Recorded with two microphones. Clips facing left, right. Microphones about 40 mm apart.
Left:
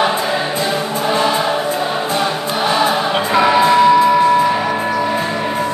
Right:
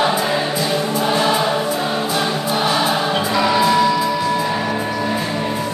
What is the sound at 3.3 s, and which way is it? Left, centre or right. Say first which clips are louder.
Music: left 5 dB; left.